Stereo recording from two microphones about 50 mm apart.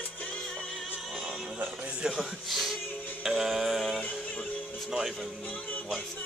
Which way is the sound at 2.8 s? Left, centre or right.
Left.